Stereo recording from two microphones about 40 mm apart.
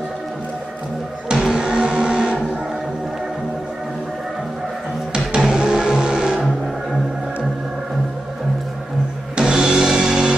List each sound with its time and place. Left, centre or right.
1.3 s music: centre
5.1 s music: centre
9.3 s music: centre